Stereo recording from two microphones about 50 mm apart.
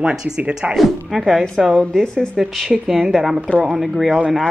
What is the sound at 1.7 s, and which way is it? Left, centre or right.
A woman's voice, centre.